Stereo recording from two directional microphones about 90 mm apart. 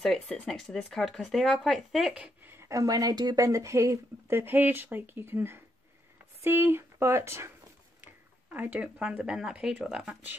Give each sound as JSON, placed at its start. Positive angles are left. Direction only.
{"t": 0.0, "sound": "speech", "side_deg": 5}
{"t": 2.1, "sound": "speech", "side_deg": -15}
{"t": 2.5, "sound": "speech", "side_deg": -35}
{"t": 8.0, "sound": "a sound", "side_deg": -20}
{"t": 9.2, "sound": "speech", "side_deg": -5}